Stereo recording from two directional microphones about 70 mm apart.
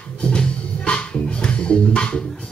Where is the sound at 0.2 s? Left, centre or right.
Centre.